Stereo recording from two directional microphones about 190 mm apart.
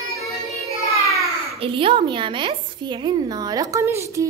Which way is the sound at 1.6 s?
30° right (ahead or behind).